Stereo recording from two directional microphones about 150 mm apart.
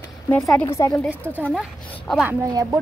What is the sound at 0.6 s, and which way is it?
Speech, 20° left (ahead or behind).